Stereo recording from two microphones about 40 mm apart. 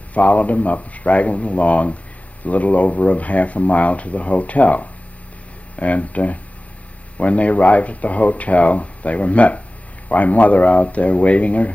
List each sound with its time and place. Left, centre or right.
0.1 s speech: left